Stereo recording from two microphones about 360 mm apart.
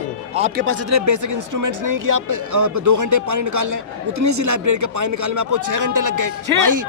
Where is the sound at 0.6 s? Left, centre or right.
Right.